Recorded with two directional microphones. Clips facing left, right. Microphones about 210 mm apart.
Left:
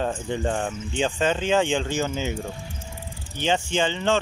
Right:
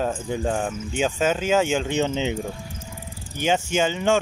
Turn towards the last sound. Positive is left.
turn(degrees=-10)  # may be behind; listen again after turning